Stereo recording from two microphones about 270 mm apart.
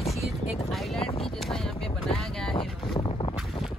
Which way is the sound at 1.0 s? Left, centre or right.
Left.